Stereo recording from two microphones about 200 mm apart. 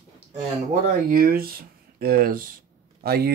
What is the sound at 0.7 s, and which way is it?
Speech, 45° right (ahead or behind).